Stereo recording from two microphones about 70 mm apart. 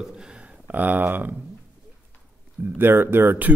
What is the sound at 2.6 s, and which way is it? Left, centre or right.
Speech, right.